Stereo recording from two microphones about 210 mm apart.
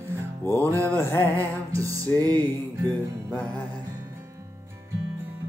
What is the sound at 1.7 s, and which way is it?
Music, 15° right (ahead or behind).